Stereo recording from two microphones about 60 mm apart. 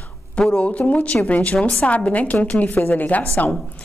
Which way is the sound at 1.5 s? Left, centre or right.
Centre.